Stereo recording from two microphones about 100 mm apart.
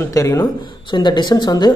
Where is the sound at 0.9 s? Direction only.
50° left (ahead or behind).